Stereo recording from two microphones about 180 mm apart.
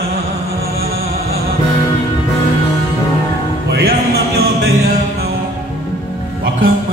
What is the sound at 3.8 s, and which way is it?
Music, 60° right (ahead or behind).